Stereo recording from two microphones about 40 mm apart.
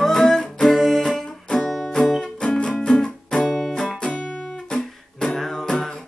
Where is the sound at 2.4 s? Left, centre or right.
Left.